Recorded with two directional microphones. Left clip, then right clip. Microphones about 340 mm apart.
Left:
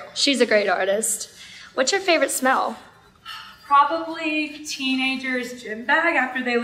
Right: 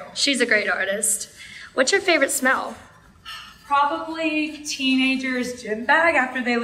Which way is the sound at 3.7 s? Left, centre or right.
Centre.